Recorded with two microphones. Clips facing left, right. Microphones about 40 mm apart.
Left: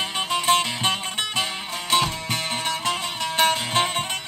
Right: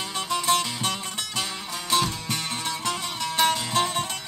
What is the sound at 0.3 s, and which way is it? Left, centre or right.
Music, left.